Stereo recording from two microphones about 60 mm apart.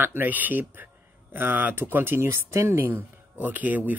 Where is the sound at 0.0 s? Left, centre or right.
Right.